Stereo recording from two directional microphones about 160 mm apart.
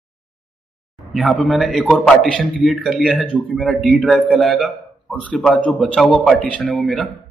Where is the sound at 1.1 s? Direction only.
Centre (ahead or behind).